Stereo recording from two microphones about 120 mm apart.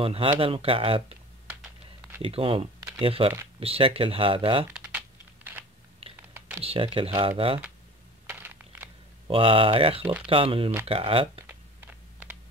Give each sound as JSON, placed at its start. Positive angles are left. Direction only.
{"t": 0.0, "sound": "speech", "side_deg": -50}
{"t": 2.2, "sound": "speech", "side_deg": -50}
{"t": 4.7, "sound": "computer keyboard", "side_deg": -10}
{"t": 6.1, "sound": "typing", "side_deg": -20}
{"t": 6.6, "sound": "speech", "side_deg": -50}
{"t": 8.3, "sound": "a sound", "side_deg": -15}
{"t": 9.3, "sound": "speech", "side_deg": -50}
{"t": 11.4, "sound": "a sound", "side_deg": -15}